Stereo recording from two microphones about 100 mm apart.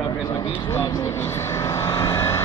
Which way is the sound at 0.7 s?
30° left (ahead or behind).